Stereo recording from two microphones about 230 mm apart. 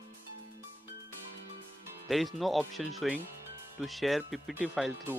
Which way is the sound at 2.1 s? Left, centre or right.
Centre.